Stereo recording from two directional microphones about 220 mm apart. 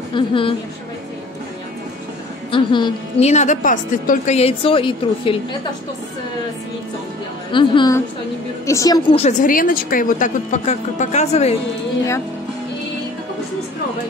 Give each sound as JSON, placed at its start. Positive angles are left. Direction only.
{"t": 0.1, "sound": "a woman's voice", "side_deg": 25}
{"t": 2.5, "sound": "a woman's voice", "side_deg": 20}
{"t": 7.5, "sound": "a woman's voice", "side_deg": 20}
{"t": 9.2, "sound": "speech", "side_deg": 40}